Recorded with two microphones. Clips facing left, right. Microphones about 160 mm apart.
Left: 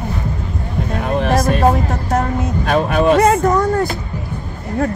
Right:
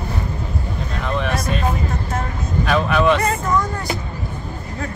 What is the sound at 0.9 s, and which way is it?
Speech, 45° left (ahead or behind).